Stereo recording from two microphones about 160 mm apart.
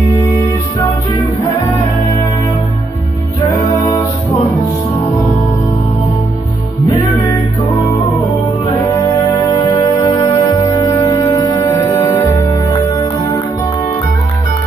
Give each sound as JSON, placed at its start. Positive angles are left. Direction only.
{"t": 9.9, "sound": "music", "side_deg": 20}